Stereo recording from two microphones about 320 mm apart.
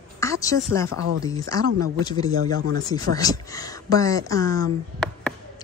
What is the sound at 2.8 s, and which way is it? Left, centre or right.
Speech, centre.